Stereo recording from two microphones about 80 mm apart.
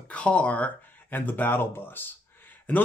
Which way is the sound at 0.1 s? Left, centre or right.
Centre.